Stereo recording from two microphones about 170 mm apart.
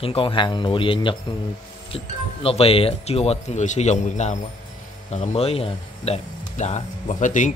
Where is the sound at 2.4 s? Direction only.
35° left (ahead or behind).